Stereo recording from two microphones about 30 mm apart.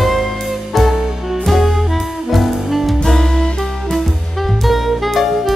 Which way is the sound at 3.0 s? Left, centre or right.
Centre.